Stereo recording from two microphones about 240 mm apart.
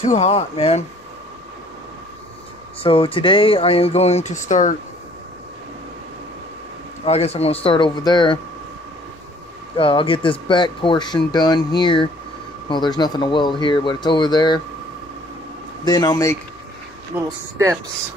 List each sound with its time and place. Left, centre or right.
0.0 s speech: left
2.8 s speech: left
7.1 s speech: left
9.8 s speech: left
15.8 s speech: centre
17.1 s speech: centre